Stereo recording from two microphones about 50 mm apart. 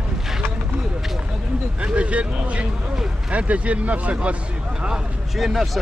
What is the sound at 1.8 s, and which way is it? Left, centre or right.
Speech, right.